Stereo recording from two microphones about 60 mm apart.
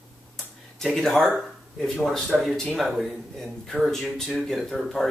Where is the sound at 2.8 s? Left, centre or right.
Centre.